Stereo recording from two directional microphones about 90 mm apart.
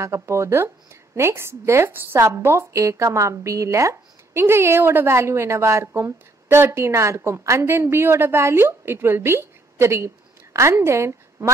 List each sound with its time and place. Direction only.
0.0 s a woman's voice: 30° right (ahead or behind)